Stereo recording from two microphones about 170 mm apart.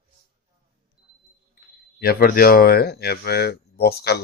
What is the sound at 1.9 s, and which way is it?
Speech, 60° left (ahead or behind).